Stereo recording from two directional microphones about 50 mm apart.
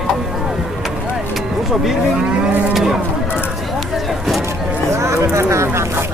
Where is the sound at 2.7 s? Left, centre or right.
Centre.